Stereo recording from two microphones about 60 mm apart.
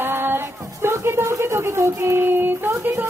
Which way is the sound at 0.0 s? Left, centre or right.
Right.